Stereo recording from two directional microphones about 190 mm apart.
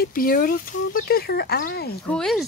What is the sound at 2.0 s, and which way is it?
Speech, 5° left (ahead or behind).